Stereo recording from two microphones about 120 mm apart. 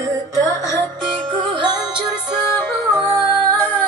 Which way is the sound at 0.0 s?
30° right (ahead or behind).